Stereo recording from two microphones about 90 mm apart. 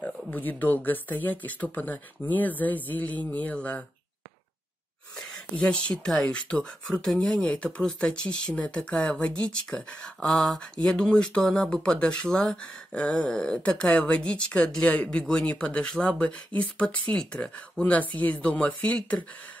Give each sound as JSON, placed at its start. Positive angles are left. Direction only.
{"t": 0.3, "sound": "speech", "side_deg": 20}
{"t": 5.6, "sound": "speech", "side_deg": 10}